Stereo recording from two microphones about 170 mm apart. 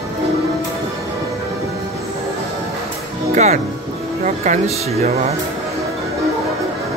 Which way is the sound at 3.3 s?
45° right (ahead or behind).